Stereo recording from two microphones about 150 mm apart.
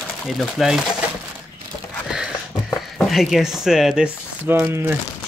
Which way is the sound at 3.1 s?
Centre (ahead or behind).